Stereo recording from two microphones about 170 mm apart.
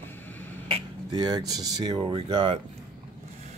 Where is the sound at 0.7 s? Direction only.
25° right (ahead or behind).